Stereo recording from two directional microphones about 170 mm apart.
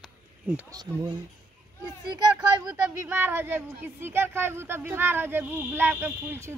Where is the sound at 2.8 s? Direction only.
10° right (ahead or behind).